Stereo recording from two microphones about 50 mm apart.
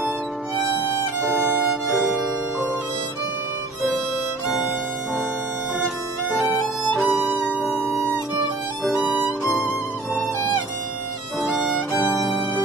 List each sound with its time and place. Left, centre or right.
1.7 s music: centre
7.1 s music: centre
9.0 s music: right
9.5 s music: centre
11.4 s violin: centre
12.1 s music: centre